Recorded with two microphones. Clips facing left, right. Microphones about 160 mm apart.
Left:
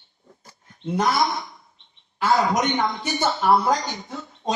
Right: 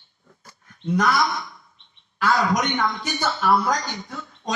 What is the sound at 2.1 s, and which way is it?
A man's voice, 25° left (ahead or behind).